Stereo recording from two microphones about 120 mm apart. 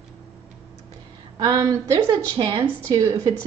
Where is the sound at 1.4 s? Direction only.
30° right (ahead or behind).